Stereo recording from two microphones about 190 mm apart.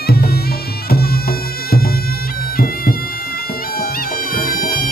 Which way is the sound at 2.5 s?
50° left (ahead or behind).